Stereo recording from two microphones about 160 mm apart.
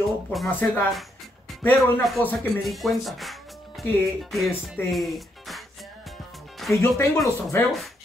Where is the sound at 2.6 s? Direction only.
Centre (ahead or behind).